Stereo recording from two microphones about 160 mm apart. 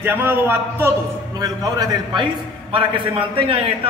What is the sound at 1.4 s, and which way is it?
A man's voice, 25° right (ahead or behind).